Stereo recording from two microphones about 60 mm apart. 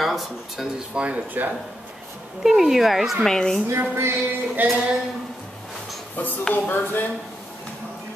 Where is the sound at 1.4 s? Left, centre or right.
Right.